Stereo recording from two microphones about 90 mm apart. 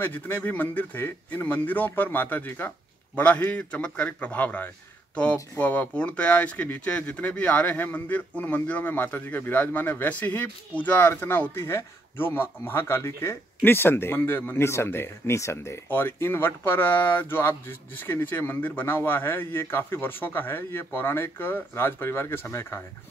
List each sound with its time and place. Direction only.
0.0 s a man's voice: 20° left (ahead or behind)